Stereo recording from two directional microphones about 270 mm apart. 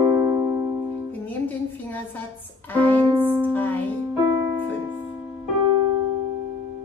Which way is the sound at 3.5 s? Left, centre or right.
Centre.